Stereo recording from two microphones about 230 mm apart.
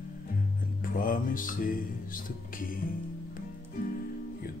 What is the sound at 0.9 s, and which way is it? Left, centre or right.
Music, left.